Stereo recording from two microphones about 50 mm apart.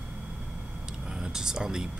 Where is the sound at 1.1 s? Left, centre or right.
Centre.